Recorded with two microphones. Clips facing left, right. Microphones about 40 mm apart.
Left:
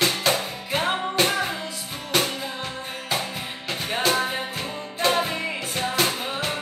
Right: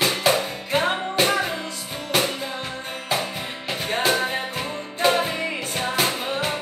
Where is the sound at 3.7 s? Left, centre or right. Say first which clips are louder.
Right 1 dB; centre.